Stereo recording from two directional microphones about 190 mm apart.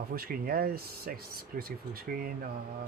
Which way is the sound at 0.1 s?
50° right (ahead or behind).